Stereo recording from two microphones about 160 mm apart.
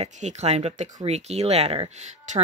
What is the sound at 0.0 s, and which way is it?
Speech, 45° right (ahead or behind).